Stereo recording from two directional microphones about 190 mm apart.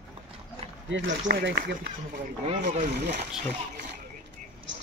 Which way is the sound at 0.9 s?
70° right (ahead or behind).